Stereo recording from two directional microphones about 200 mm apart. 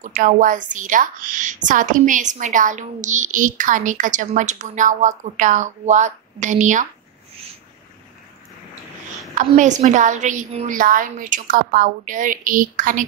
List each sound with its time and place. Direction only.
0.0 s a woman's voice: 40° right (ahead or behind)
9.3 s a woman's voice: 40° right (ahead or behind)